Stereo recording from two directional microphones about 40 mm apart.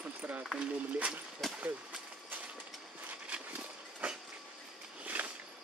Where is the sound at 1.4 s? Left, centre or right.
Centre.